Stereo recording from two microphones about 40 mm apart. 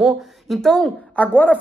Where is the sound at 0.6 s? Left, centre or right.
Centre.